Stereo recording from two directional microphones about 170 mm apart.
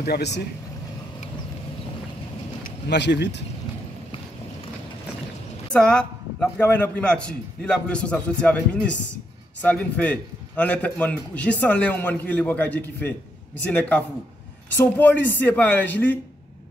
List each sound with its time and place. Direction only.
0.0 s speech: 75° left (ahead or behind)
2.9 s speech: 90° left
5.7 s a man's voice: 5° left (ahead or behind)